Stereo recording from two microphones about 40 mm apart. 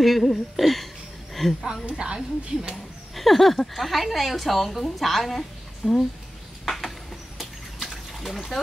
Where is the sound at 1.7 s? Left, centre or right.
Right.